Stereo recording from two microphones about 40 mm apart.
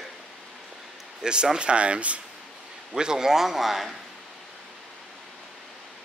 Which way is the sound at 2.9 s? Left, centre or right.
Centre.